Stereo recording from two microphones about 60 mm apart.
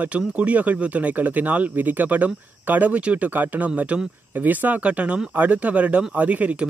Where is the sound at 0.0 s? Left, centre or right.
Right.